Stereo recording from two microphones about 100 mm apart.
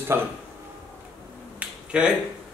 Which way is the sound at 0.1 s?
20° right (ahead or behind).